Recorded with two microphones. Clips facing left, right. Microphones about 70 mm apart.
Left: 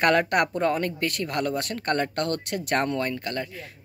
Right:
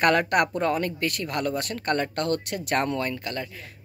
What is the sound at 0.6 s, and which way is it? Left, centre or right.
Speech, left.